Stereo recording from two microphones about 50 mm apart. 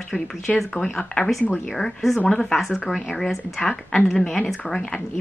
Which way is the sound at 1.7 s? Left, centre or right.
Centre.